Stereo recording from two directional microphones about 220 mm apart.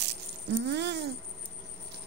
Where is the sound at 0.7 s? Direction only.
50° right (ahead or behind).